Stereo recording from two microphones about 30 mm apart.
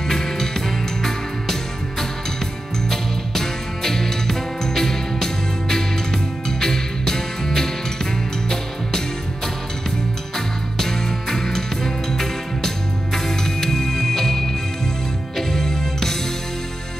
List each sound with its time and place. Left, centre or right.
0.1 s music: centre
10.3 s music: centre